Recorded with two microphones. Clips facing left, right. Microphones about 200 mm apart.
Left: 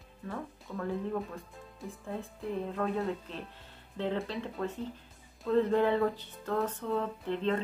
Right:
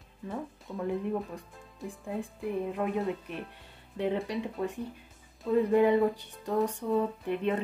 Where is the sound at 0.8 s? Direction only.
15° right (ahead or behind).